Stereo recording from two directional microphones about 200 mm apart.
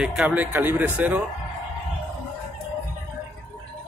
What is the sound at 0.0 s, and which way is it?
Speech, 5° right (ahead or behind).